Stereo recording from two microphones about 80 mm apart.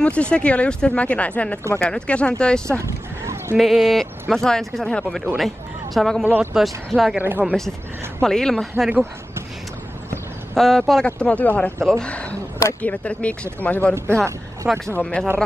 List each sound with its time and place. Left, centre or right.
0.0 s speech: centre
2.8 s a sound: right
3.5 s speech: centre
7.2 s speech: right
8.2 s speech: centre
10.5 s speech: centre
11.1 s speech: centre
14.7 s speech: centre
15.0 s speech: centre